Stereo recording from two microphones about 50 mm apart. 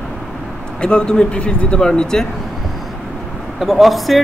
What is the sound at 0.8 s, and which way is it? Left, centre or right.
A man's voice, centre.